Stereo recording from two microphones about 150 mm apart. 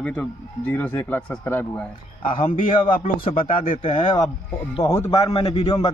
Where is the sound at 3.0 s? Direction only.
40° left (ahead or behind).